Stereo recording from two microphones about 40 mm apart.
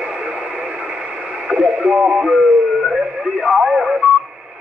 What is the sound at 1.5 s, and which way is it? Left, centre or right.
Speech, right.